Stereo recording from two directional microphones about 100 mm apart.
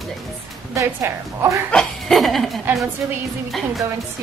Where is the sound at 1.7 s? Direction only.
5° left (ahead or behind).